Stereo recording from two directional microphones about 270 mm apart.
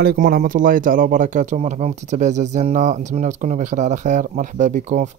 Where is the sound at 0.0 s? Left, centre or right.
Right.